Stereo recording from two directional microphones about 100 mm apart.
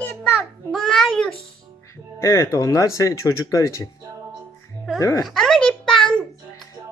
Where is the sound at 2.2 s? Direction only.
30° left (ahead or behind).